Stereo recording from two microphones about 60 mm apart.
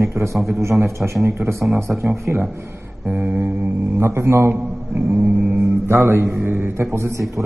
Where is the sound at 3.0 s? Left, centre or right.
Right.